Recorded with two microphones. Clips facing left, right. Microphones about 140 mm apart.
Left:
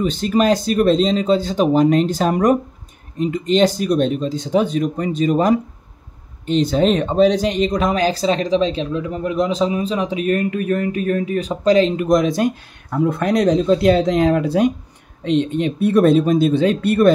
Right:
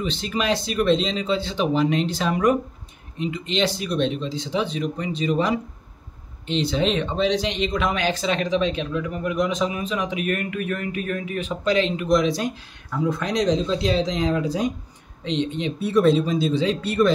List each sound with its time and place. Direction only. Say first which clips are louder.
0.0 s speech: left 9 dB; 45° left (ahead or behind); by 14.7 s 60° left (ahead or behind)
15.2 s speech: left 7 dB; 50° left (ahead or behind)